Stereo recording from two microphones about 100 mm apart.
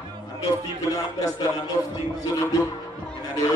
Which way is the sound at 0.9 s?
35° left (ahead or behind).